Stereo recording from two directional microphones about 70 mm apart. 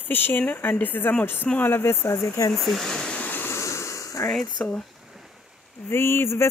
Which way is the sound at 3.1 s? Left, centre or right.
Left.